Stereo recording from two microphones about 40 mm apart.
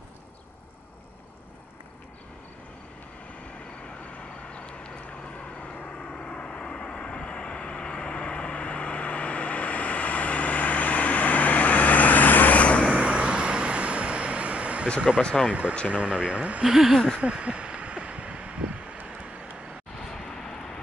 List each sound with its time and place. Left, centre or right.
4.5 s a sound: left
5.9 s vehicle: left
12.9 s vehicle: right
15.0 s speech: right
16.6 s speech: centre
17.2 s a sound: right